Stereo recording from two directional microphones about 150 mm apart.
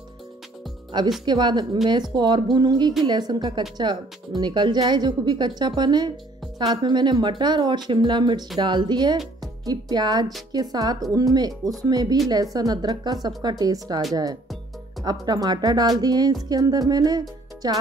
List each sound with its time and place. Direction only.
1.2 s music: 30° right (ahead or behind)
1.9 s speech: 30° right (ahead or behind)
2.5 s music: 25° right (ahead or behind)
3.7 s speech: 30° right (ahead or behind)
5.6 s music: 30° right (ahead or behind)
9.4 s speech: 25° right (ahead or behind)
10.5 s music: 25° right (ahead or behind)